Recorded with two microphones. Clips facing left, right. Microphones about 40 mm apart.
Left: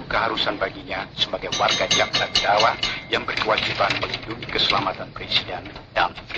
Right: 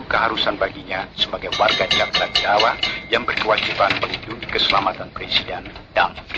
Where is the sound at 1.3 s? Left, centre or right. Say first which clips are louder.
Right 4 dB; centre.